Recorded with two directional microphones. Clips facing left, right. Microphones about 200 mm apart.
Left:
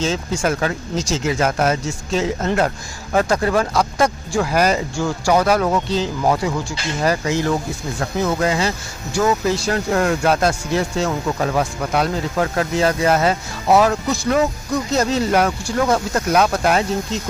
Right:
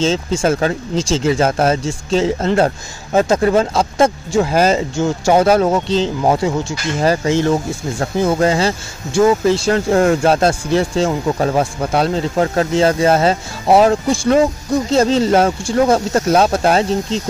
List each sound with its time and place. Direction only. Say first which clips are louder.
0.0 s speech: right 4 dB; 25° right (ahead or behind)